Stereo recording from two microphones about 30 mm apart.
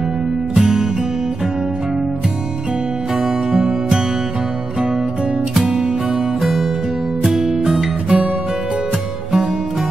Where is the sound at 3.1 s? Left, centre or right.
Centre.